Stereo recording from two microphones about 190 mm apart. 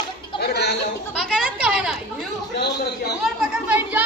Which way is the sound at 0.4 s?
60° left (ahead or behind).